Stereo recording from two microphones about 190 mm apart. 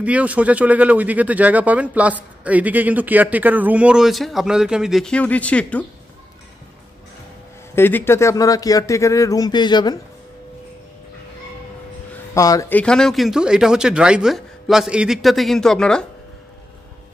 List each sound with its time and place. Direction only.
0.0 s speech: 5° right (ahead or behind)
7.7 s speech: 10° left (ahead or behind)
12.4 s speech: 15° left (ahead or behind)